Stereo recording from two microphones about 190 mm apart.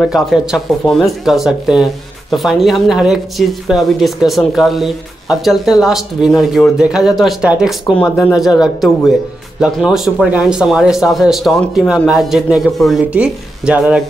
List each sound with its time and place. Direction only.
0.0 s a woman's voice: centre (ahead or behind)